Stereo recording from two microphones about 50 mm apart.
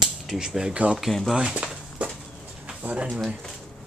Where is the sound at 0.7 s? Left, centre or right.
Right.